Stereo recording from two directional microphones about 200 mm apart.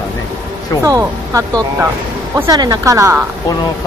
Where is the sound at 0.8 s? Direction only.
15° right (ahead or behind).